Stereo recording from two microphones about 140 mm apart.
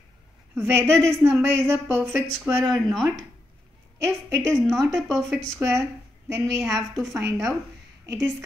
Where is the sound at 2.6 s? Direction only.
Centre (ahead or behind).